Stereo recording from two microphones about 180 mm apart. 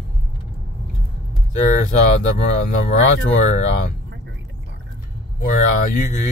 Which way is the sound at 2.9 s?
40° left (ahead or behind).